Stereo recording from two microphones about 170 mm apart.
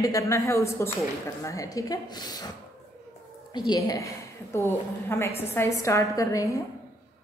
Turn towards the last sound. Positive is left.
turn(degrees=20)  # may be behind; listen again after turning